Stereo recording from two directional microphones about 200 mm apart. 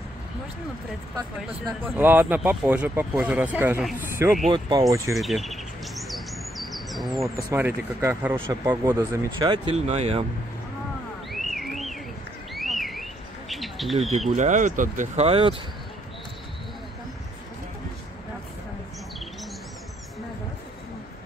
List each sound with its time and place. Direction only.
2.0 s speech: 10° right (ahead or behind)
4.5 s speech: 20° right (ahead or behind)
5.1 s bird: centre (ahead or behind)
7.5 s speech: 10° right (ahead or behind); by 10.2 s 30° right (ahead or behind)
11.3 s a sound: centre (ahead or behind)
14.3 s speech: 40° right (ahead or behind)